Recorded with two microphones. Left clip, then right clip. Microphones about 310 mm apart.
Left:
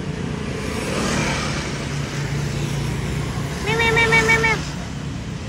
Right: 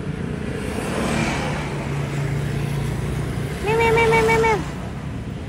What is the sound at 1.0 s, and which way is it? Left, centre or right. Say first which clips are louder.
Vehicle: left 1 dB; right.